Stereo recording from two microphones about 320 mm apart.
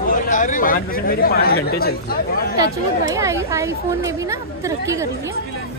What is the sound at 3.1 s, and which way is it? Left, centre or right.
A woman's voice, centre.